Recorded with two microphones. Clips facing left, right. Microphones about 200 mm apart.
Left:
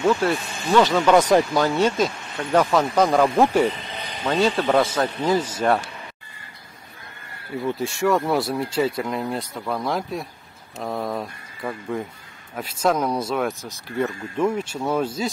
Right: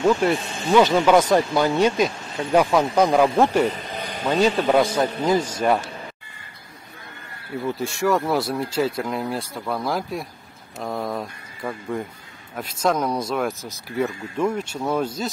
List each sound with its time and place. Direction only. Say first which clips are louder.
0.1 s speech: right 1 dB; 15° right (ahead or behind)
1.1 s speech: left 1 dB; centre (ahead or behind)
1.8 s speech: right 1 dB; 15° right (ahead or behind); by 3.7 s centre (ahead or behind)
3.7 s a sound: right 3 dB; 45° right (ahead or behind)
4.2 s speech: right 1 dB; 10° right (ahead or behind)
7.6 s speech: left 1 dB; centre (ahead or behind)